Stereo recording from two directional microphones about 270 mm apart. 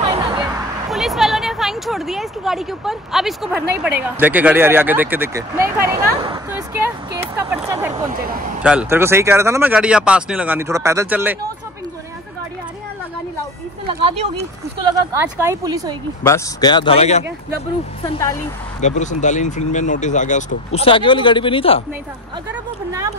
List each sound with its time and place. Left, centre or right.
0.3 s a sound: centre
0.8 s speech: centre
15.0 s speech: centre
16.3 s speech: centre
18.8 s speech: left
22.5 s speech: centre